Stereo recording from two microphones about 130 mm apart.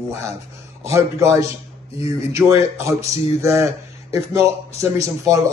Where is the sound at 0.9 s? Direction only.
20° right (ahead or behind).